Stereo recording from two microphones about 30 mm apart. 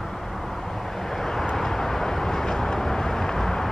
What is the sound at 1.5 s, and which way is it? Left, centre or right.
Vehicle, centre.